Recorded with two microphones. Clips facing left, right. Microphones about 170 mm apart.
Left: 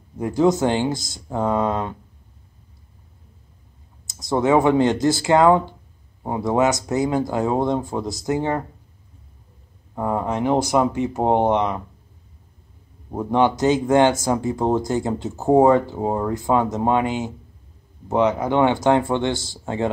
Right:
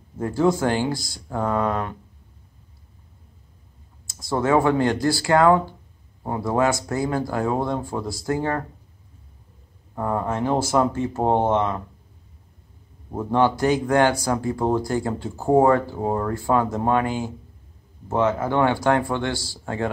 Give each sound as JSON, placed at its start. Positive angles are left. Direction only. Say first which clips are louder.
{"t": 0.2, "sound": "speech", "louder": "left 2 dB", "side_deg": 15}
{"t": 4.1, "sound": "speech", "louder": "left 2 dB", "side_deg": 20}
{"t": 9.9, "sound": "speech", "louder": "left 2 dB", "side_deg": 15}
{"t": 13.1, "sound": "speech", "louder": "left 1 dB", "side_deg": 15}